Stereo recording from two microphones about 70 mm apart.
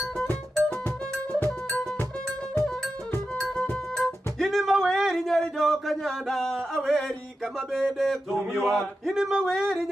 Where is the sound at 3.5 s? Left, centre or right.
Centre.